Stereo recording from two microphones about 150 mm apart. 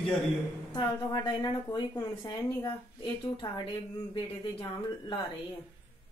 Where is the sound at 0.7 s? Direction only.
25° left (ahead or behind).